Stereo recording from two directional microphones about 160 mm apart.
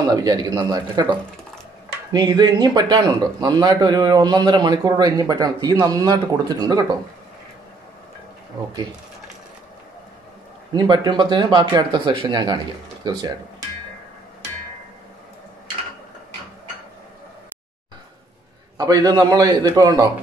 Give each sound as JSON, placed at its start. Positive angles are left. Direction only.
{"t": 0.1, "sound": "a man's voice", "side_deg": -25}
{"t": 2.1, "sound": "a man's voice", "side_deg": -25}
{"t": 8.5, "sound": "a man's voice", "side_deg": -25}
{"t": 10.7, "sound": "a man's voice", "side_deg": -25}
{"t": 18.8, "sound": "a man's voice", "side_deg": -25}